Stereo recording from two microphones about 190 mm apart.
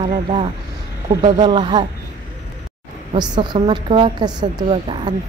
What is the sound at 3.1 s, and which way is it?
Speech, 25° right (ahead or behind).